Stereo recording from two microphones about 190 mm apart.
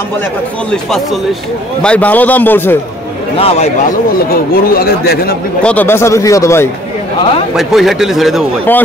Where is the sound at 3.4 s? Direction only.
30° left (ahead or behind).